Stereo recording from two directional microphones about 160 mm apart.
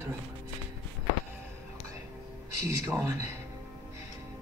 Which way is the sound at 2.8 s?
20° right (ahead or behind).